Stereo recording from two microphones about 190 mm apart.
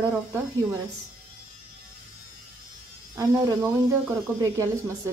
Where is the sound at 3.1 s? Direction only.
15° right (ahead or behind).